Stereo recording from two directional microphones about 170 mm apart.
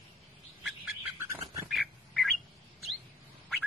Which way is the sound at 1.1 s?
20° right (ahead or behind).